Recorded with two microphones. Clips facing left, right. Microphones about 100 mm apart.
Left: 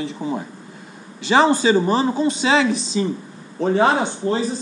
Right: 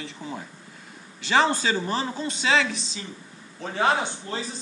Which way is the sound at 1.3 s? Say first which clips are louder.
Left 7 dB; 10° left (ahead or behind).